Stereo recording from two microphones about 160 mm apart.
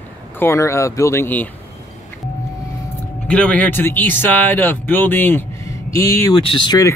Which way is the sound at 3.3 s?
5° left (ahead or behind).